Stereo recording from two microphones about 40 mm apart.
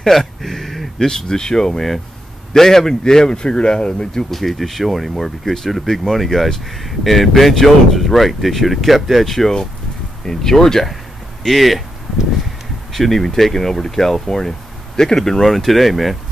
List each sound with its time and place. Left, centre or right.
0.0 s a sound: centre
1.0 s speech: centre
4.3 s speech: centre
12.9 s speech: centre